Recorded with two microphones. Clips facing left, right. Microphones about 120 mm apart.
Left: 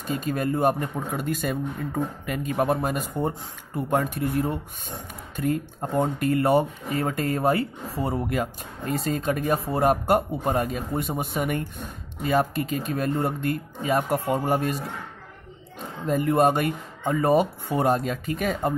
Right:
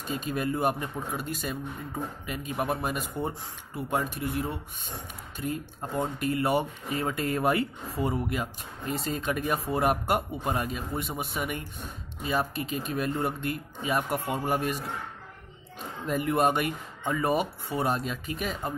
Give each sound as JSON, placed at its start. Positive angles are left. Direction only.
{"t": 0.0, "sound": "a man's voice", "side_deg": 45}
{"t": 16.1, "sound": "a man's voice", "side_deg": 35}